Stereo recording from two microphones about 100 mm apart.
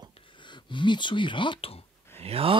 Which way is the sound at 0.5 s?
50° left (ahead or behind).